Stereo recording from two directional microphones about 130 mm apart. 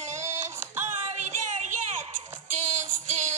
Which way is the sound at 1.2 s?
65° right (ahead or behind).